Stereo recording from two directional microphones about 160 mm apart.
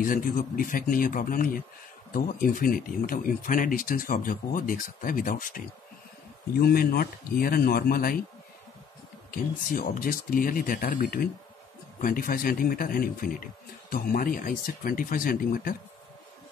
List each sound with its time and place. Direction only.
0.0 s speech: 60° left (ahead or behind)
6.6 s speech: 70° left (ahead or behind)
9.3 s speech: 60° left (ahead or behind)